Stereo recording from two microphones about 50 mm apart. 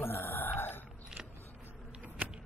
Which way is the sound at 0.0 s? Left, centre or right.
Left.